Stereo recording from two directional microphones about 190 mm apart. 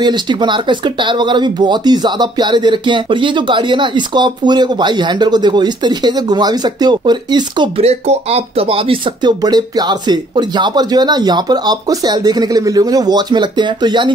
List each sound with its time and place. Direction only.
0.0 s speech: 25° right (ahead or behind)